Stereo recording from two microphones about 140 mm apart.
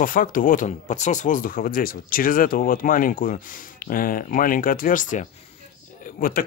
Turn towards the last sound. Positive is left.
turn(degrees=80)